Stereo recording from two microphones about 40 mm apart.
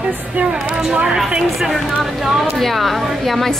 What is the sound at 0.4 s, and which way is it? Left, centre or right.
Speech, right.